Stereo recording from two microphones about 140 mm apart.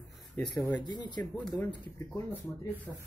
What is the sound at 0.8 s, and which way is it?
Speech, 30° left (ahead or behind).